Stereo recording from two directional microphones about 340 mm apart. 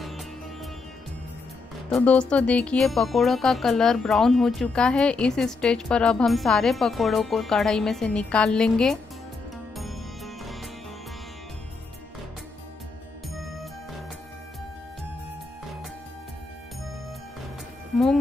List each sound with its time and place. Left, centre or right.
1.9 s speech: centre
9.8 s music: centre
13.3 s music: centre